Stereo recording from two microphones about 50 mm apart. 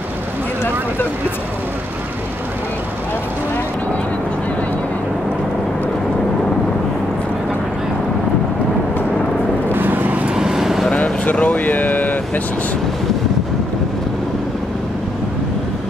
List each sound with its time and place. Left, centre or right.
9.7 s vehicle: right
10.3 s vehicle: centre
10.9 s vehicle: left